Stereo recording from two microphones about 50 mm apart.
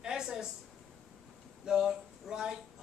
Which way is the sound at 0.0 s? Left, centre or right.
Centre.